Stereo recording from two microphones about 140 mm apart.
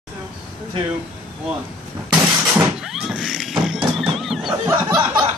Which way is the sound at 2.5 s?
5° right (ahead or behind).